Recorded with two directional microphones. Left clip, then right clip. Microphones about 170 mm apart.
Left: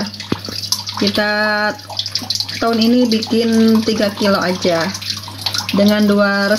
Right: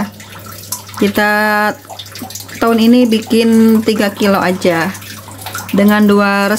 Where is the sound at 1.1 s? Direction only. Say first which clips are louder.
Right 4 dB; 35° right (ahead or behind).